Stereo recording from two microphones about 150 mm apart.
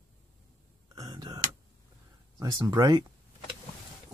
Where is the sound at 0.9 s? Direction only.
25° right (ahead or behind).